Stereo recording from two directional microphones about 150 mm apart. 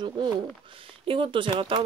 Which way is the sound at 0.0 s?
35° right (ahead or behind).